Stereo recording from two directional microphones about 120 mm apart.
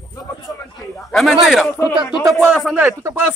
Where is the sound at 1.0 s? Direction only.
Centre (ahead or behind).